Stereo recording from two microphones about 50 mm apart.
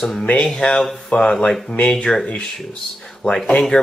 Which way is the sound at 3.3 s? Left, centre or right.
Centre.